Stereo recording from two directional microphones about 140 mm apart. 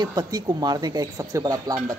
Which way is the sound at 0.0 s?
30° right (ahead or behind).